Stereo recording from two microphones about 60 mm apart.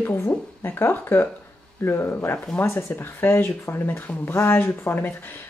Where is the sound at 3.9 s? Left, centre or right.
Left.